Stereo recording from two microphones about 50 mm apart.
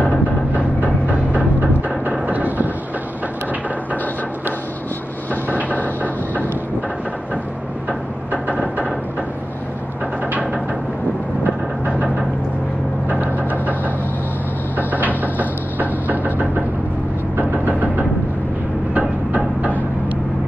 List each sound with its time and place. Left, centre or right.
2.0 s music: right
8.3 s vehicle: right
11.4 s vehicle: right
13.1 s music: right
14.8 s a sound: right
17.4 s vehicle: right
18.9 s music: right